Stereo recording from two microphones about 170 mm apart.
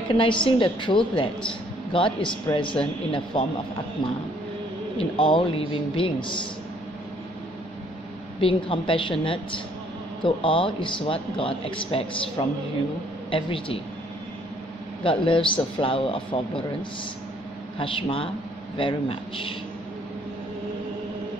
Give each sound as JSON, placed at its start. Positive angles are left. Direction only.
{"t": 0.1, "sound": "a man's voice", "side_deg": 30}
{"t": 8.4, "sound": "a man's voice", "side_deg": 30}
{"t": 15.0, "sound": "a man's voice", "side_deg": 30}
{"t": 17.7, "sound": "a man's voice", "side_deg": 30}